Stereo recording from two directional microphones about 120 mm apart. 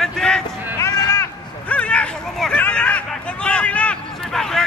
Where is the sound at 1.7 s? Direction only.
10° left (ahead or behind).